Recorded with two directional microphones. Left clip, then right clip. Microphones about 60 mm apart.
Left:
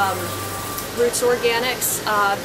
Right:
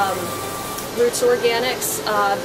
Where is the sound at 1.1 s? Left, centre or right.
Centre.